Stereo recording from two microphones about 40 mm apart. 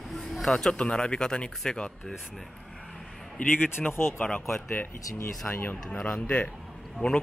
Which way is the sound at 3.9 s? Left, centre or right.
Left.